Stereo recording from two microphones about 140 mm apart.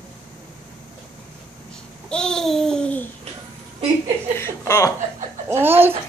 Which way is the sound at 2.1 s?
5° left (ahead or behind).